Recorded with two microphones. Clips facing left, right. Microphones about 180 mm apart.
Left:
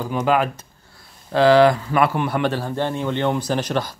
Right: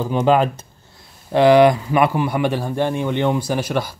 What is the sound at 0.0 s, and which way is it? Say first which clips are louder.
Speech: right 4 dB; 25° right (ahead or behind).